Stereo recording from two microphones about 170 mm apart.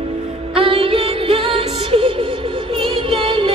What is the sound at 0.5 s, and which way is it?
Music, 35° right (ahead or behind).